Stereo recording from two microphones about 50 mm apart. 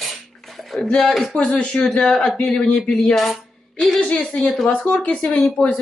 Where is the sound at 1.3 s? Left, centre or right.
Left.